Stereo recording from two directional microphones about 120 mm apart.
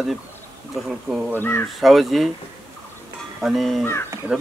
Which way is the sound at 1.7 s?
Centre (ahead or behind).